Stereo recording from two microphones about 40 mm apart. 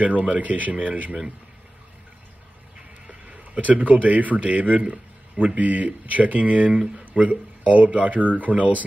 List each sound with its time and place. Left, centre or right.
0.0 s speech: right
3.1 s speech: right
5.6 s speech: right